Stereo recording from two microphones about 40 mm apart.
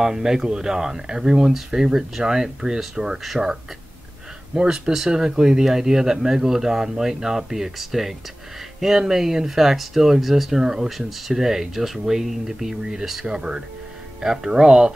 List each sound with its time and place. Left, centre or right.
0.0 s speech: centre
4.6 s speech: centre
10.9 s speech: centre
13.4 s speech: right